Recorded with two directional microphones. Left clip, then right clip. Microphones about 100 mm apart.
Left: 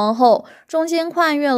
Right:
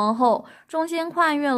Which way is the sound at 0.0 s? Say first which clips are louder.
Left 6 dB; 30° left (ahead or behind).